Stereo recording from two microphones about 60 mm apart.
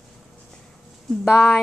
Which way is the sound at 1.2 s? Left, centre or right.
Centre.